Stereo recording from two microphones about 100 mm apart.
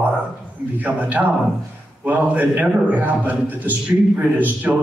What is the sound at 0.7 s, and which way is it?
A man's voice, 15° right (ahead or behind).